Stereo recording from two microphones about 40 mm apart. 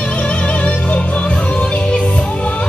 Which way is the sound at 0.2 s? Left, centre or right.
Left.